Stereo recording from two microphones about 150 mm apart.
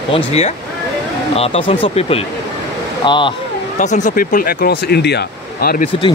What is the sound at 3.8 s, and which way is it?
Speech, 55° left (ahead or behind).